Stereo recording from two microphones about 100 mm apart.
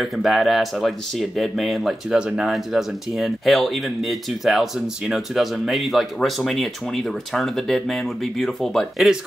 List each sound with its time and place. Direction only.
0.0 s speech: centre (ahead or behind)